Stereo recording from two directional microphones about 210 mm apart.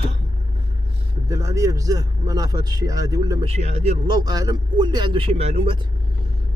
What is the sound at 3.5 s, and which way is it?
Speech, 30° right (ahead or behind).